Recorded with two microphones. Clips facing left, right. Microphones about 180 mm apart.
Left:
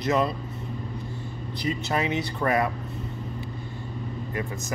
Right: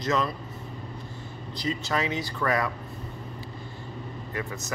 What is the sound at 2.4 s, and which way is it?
Speech, 25° left (ahead or behind).